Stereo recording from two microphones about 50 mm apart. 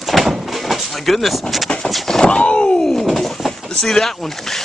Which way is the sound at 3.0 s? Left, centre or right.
Centre.